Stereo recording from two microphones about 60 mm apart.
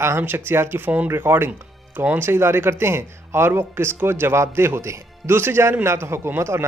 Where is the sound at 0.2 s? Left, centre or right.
Right.